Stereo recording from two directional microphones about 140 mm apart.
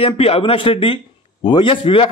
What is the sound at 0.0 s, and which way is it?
A man's voice, 45° left (ahead or behind).